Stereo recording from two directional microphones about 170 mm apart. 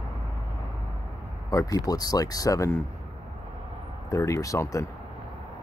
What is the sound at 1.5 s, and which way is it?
Speech, 20° left (ahead or behind).